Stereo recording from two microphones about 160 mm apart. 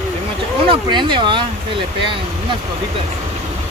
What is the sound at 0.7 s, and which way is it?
Speech, 30° right (ahead or behind).